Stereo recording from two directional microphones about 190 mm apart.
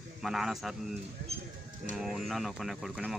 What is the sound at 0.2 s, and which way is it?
Speech, centre (ahead or behind).